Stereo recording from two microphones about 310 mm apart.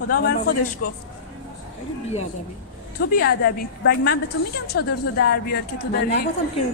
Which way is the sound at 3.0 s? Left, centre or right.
Left.